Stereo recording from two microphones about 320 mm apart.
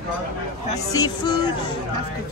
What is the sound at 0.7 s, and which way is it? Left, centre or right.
Speech, centre.